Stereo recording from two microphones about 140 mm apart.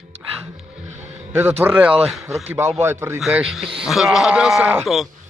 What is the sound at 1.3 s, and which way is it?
A man's voice, 15° right (ahead or behind).